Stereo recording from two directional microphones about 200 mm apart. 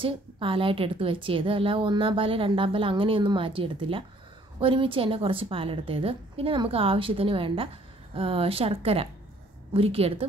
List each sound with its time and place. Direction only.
0.0 s a woman's voice: 25° right (ahead or behind)